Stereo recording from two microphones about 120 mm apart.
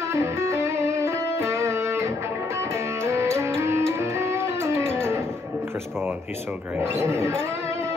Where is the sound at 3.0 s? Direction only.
25° right (ahead or behind).